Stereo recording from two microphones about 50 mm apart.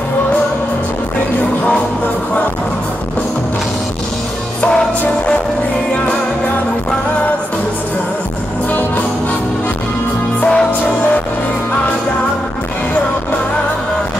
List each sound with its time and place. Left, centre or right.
4.6 s music: centre
10.4 s music: centre